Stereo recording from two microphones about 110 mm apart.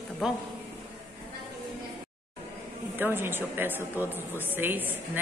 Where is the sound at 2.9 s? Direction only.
20° right (ahead or behind).